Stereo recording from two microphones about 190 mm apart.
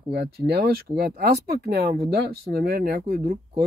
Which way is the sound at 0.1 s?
60° right (ahead or behind).